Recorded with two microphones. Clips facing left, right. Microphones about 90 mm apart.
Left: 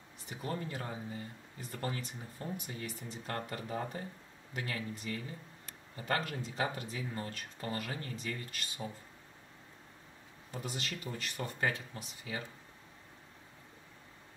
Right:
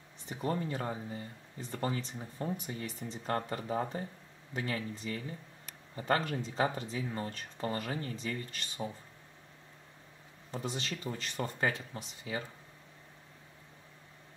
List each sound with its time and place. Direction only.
0.3 s speech: 30° right (ahead or behind)
10.5 s speech: 30° right (ahead or behind)